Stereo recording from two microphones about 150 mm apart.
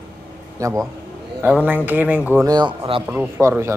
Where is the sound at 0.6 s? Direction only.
20° right (ahead or behind).